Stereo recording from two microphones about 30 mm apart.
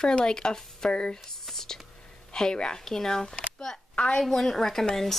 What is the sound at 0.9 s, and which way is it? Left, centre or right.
Speech, left.